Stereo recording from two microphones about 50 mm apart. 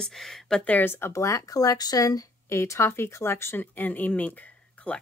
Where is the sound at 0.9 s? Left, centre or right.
Left.